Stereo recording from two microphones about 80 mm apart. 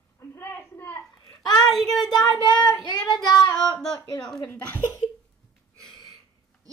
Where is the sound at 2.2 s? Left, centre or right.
Left.